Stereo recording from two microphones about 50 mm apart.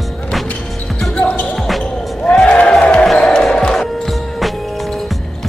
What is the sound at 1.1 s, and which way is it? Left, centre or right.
Basketball bounce, left.